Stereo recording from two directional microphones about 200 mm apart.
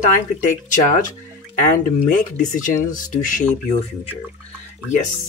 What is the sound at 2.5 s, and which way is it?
Speech, 40° left (ahead or behind).